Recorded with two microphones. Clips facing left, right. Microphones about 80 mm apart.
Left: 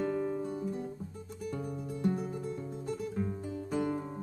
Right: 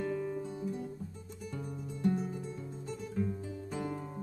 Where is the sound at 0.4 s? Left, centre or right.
Left.